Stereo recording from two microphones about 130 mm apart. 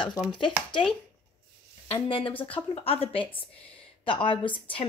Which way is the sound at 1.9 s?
45° left (ahead or behind).